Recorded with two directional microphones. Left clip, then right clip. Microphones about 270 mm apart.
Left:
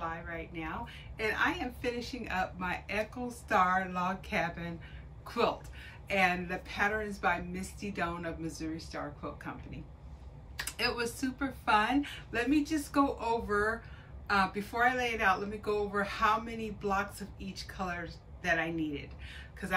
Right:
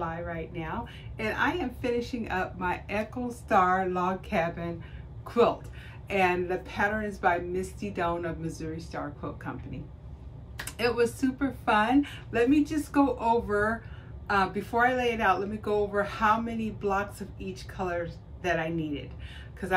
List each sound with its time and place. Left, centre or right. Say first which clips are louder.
0.0 s a woman's voice: right 5 dB; centre
10.6 s a woman's voice: right 7 dB; centre